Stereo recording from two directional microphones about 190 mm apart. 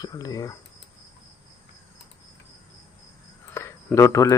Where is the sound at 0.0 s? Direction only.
20° left (ahead or behind).